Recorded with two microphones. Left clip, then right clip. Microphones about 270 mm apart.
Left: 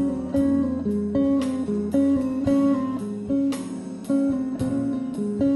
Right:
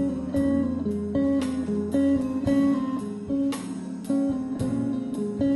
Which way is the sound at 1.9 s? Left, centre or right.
Left.